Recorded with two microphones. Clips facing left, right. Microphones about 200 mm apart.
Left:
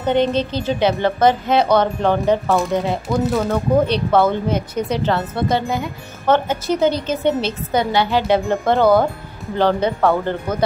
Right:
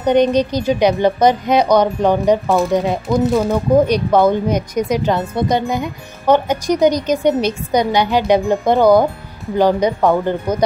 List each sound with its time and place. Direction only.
0.0 s speech: 15° right (ahead or behind)